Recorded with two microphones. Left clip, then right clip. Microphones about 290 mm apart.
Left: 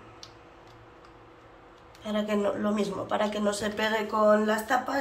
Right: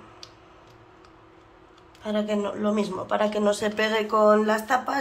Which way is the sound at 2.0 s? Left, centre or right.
Centre.